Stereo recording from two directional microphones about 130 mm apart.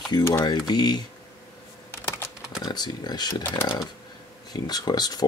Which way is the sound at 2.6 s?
30° left (ahead or behind).